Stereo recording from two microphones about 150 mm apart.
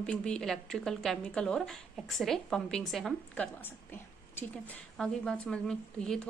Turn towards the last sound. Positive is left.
turn(degrees=5)  # may be behind; listen again after turning